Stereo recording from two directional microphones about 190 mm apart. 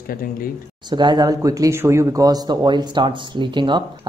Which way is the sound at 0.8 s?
25° right (ahead or behind).